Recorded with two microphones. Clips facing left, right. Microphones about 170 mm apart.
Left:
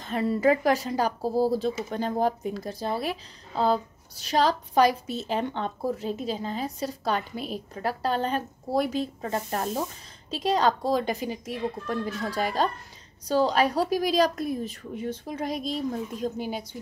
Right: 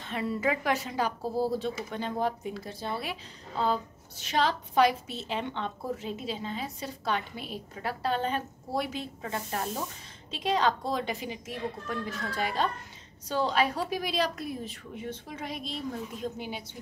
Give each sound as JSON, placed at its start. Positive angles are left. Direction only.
{"t": 0.0, "sound": "a woman's voice", "side_deg": 40}